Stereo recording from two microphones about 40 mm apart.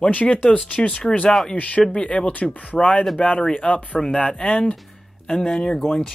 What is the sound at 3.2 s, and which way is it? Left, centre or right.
Speech, left.